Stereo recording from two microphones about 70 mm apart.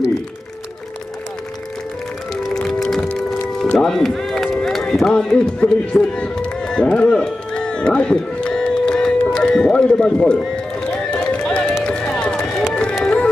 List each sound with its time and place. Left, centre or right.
2.5 s music: centre
4.6 s run: centre
5.1 s a man's voice: centre
11.1 s run: centre
13.0 s music: centre